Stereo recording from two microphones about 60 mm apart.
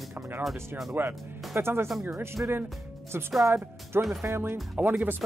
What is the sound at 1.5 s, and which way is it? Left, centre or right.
Speech, right.